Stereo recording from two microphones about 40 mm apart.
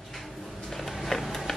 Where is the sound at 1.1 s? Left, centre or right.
Centre.